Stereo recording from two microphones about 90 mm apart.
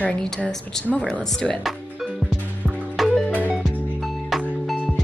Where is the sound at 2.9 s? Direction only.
Centre (ahead or behind).